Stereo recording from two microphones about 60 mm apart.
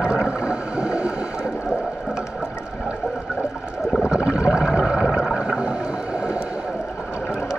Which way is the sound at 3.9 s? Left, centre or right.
Centre.